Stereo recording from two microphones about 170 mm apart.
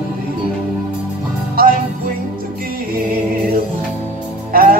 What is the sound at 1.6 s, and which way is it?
Music, 60° right (ahead or behind).